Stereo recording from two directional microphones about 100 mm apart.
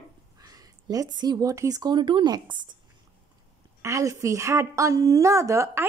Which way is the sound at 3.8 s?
30° right (ahead or behind).